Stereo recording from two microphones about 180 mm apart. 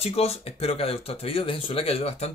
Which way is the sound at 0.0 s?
35° left (ahead or behind).